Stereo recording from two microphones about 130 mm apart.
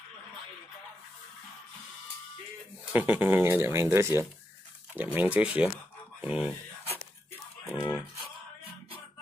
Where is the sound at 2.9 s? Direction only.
15° right (ahead or behind).